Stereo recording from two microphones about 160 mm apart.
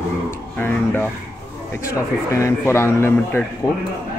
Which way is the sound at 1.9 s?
20° left (ahead or behind).